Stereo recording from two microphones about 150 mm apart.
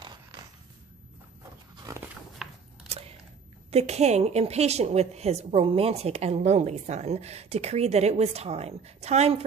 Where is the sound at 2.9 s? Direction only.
40° right (ahead or behind).